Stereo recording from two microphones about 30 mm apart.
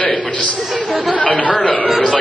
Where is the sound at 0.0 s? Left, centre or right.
Left.